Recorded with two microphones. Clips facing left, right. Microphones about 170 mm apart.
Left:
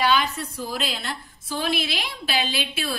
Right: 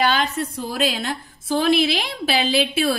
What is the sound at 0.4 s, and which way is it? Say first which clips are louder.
Speech: right 6 dB; 50° right (ahead or behind).